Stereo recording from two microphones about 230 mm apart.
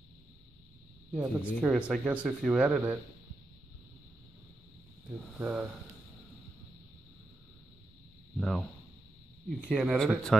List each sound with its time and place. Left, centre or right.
1.1 s speech: centre
5.4 s speech: centre
8.4 s speech: centre